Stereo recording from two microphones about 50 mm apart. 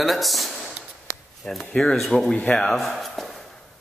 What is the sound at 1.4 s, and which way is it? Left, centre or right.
Speech, left.